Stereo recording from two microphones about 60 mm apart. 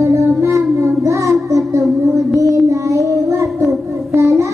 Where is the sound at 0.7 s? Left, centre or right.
Right.